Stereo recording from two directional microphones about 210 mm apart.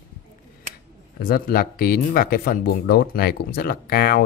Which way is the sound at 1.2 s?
45° left (ahead or behind).